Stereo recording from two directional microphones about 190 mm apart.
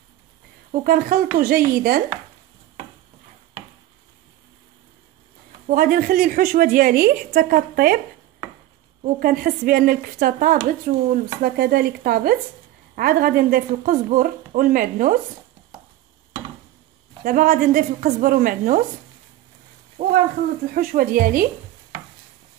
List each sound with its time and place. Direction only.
0.7 s a woman's voice: 45° right (ahead or behind)
5.7 s a woman's voice: 50° right (ahead or behind)
9.0 s a woman's voice: 50° right (ahead or behind)
17.2 s a woman's voice: 50° right (ahead or behind)
20.0 s a woman's voice: 50° right (ahead or behind)